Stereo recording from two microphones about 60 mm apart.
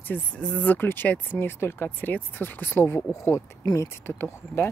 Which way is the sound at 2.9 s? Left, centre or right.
Left.